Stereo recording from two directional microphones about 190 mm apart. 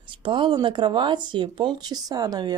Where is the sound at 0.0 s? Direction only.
25° right (ahead or behind).